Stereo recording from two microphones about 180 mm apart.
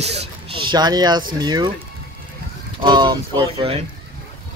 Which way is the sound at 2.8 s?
25° right (ahead or behind).